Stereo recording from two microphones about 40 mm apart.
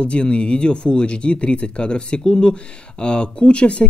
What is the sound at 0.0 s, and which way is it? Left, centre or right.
Speech, left.